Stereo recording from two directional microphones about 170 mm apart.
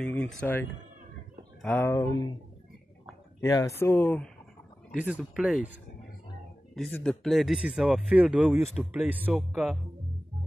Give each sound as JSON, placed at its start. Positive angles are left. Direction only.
{"t": 0.0, "sound": "speech", "side_deg": 10}
{"t": 1.9, "sound": "speech", "side_deg": 20}
{"t": 3.3, "sound": "speech", "side_deg": 20}
{"t": 4.9, "sound": "speech", "side_deg": -5}
{"t": 6.7, "sound": "speech", "side_deg": 5}